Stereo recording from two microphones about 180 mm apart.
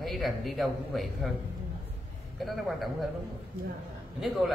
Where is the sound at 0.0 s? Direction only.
Centre (ahead or behind).